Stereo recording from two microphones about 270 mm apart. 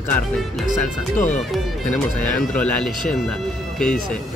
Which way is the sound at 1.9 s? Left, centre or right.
Left.